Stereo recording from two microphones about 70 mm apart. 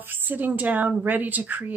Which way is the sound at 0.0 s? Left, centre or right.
Right.